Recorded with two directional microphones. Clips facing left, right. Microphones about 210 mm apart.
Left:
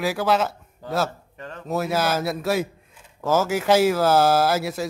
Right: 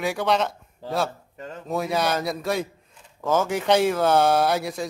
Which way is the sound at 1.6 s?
5° left (ahead or behind).